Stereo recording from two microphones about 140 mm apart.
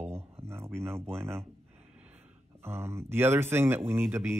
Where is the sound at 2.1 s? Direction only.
50° right (ahead or behind).